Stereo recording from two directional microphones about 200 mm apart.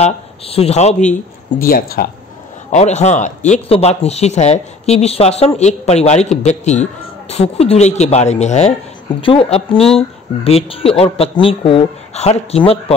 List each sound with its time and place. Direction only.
0.0 s speech: 30° left (ahead or behind)
1.6 s speech: 45° left (ahead or behind)
2.7 s speech: 35° left (ahead or behind)